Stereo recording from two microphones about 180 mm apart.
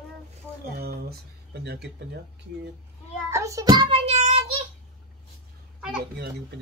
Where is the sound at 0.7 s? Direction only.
60° right (ahead or behind).